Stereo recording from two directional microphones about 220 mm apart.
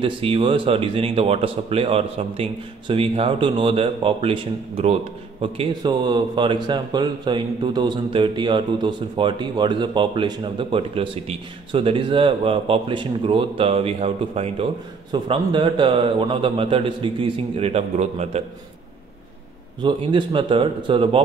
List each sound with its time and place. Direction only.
0.0 s speech: 25° right (ahead or behind)
19.8 s speech: 20° right (ahead or behind)